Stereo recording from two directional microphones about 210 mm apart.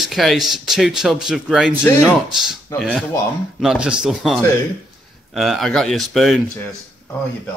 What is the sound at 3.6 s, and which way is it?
Speech, 5° right (ahead or behind).